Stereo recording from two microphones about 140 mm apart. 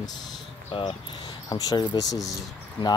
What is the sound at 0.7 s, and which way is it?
Speech, 40° left (ahead or behind).